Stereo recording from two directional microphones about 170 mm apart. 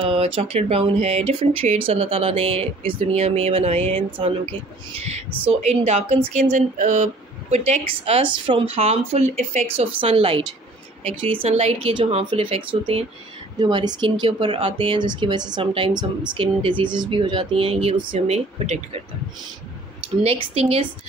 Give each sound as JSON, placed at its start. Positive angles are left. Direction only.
{"t": 0.0, "sound": "speech", "side_deg": -35}
{"t": 20.2, "sound": "speech", "side_deg": -35}